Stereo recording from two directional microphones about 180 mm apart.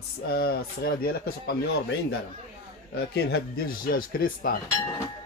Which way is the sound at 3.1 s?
65° left (ahead or behind).